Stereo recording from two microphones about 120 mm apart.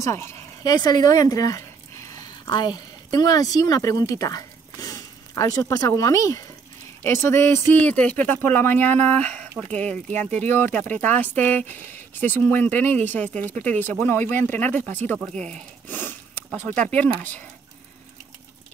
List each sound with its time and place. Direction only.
0.0 s speech: 20° left (ahead or behind)
0.7 s speech: 35° left (ahead or behind); by 15.5 s 10° left (ahead or behind)
15.9 s a sound: 15° left (ahead or behind)
16.7 s speech: 10° left (ahead or behind)